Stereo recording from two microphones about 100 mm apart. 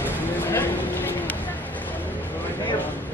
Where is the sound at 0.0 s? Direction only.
20° left (ahead or behind).